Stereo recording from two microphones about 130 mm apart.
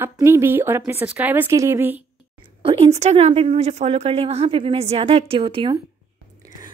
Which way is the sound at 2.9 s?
55° right (ahead or behind).